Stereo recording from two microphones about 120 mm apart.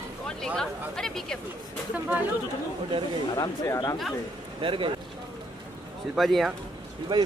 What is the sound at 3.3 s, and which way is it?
Speech, 25° left (ahead or behind).